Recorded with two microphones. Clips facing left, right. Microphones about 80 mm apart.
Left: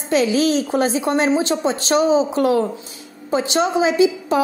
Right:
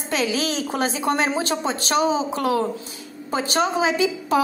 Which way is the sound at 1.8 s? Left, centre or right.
Left.